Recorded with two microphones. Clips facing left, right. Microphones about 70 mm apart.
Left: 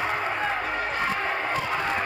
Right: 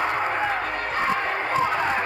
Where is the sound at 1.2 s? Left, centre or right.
Centre.